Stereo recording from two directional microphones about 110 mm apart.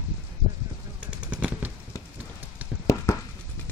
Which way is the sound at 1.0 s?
15° right (ahead or behind).